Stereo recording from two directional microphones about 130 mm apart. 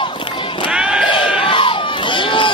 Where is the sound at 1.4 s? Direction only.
40° left (ahead or behind).